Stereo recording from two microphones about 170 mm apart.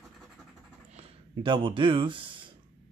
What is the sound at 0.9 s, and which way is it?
Speech, 35° right (ahead or behind).